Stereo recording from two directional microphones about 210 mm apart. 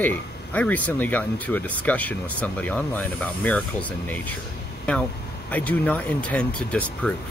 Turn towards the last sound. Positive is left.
turn(degrees=5)  # may be behind; listen again after turning